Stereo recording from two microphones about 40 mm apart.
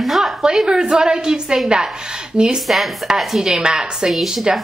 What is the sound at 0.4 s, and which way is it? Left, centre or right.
A woman's voice, centre.